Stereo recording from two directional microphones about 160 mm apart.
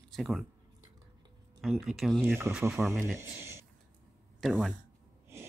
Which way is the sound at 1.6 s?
Centre (ahead or behind).